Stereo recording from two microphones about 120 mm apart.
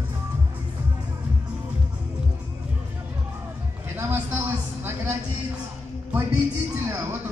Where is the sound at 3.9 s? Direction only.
15° right (ahead or behind).